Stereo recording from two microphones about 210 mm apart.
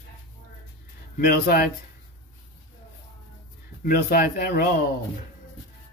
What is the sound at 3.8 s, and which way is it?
Speech, 45° left (ahead or behind).